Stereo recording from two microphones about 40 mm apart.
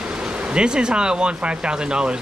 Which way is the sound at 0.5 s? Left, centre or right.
Right.